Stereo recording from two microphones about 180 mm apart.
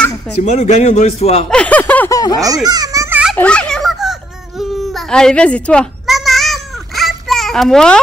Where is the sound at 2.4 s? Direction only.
20° right (ahead or behind).